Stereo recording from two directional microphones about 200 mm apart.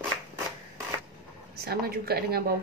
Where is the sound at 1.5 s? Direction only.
50° right (ahead or behind).